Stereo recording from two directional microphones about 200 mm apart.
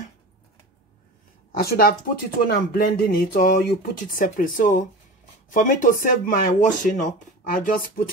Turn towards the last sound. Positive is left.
turn(degrees=45)  # may be behind; listen again after turning